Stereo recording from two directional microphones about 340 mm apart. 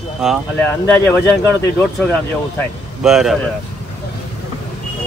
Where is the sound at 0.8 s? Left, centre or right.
Centre.